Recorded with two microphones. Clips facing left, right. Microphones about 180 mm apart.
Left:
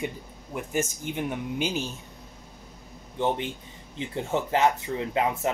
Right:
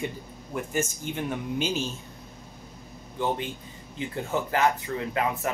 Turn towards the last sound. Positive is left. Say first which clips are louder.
# left 2 dB
turn(degrees=25)  # may be behind; listen again after turning